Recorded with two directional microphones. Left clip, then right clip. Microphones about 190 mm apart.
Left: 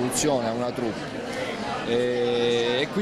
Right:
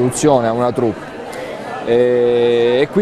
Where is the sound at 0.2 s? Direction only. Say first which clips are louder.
Right 12 dB; 35° right (ahead or behind).